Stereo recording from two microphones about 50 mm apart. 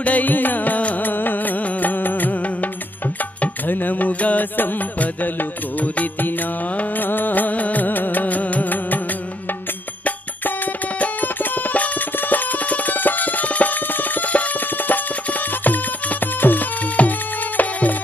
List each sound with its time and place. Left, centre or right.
0.0 s music: left
11.0 s music: left
16.3 s music: left